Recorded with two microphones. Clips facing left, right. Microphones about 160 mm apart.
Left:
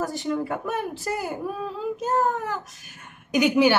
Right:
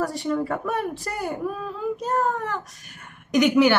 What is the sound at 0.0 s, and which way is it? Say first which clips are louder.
Speech: right 2 dB; 20° left (ahead or behind).